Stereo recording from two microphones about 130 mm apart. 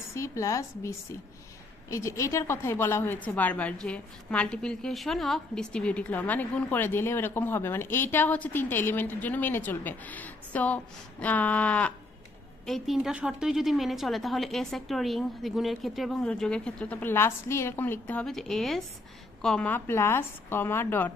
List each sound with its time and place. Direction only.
0.1 s a woman's voice: 20° left (ahead or behind)
12.6 s a woman's voice: centre (ahead or behind); by 21.1 s 15° left (ahead or behind)